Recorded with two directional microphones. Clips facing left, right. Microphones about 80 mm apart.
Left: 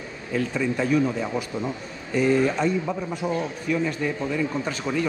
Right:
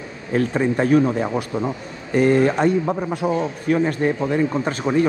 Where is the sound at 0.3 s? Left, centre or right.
Right.